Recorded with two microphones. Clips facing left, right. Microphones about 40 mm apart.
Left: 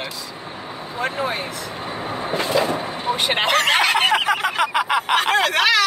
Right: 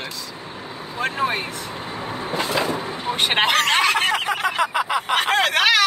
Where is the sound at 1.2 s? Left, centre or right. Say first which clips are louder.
Right 2 dB; right.